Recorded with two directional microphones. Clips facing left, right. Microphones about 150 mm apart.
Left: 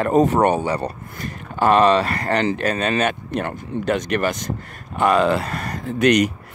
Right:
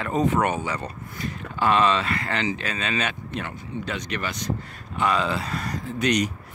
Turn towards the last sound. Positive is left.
turn(degrees=60)  # may be behind; listen again after turning